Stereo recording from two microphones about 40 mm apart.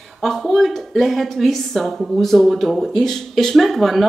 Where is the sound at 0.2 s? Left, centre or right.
Centre.